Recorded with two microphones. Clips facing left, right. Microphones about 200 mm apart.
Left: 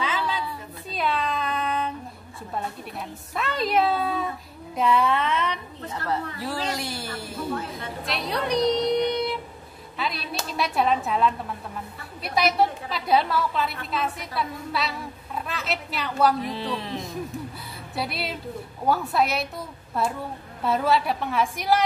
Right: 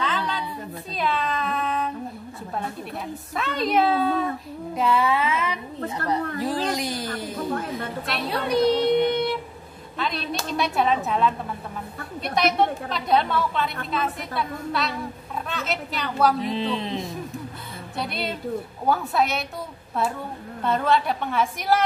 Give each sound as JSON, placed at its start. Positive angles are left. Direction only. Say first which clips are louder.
{"t": 0.9, "sound": "cat", "louder": "even", "side_deg": 0}
{"t": 3.3, "sound": "a woman's voice", "louder": "right 1 dB", "side_deg": 0}
{"t": 6.4, "sound": "speech", "louder": "right 4 dB", "side_deg": -15}
{"t": 8.1, "sound": "a sound", "louder": "right 1 dB", "side_deg": -5}
{"t": 9.9, "sound": "a woman's voice", "louder": "right 2 dB", "side_deg": 5}
{"t": 16.4, "sound": "speech", "louder": "right 4 dB", "side_deg": -20}
{"t": 17.9, "sound": "a woman's voice", "louder": "right 1 dB", "side_deg": 5}
{"t": 20.6, "sound": "a woman's voice", "louder": "even", "side_deg": 5}